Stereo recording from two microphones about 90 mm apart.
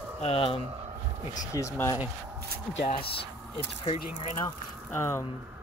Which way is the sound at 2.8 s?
85° left.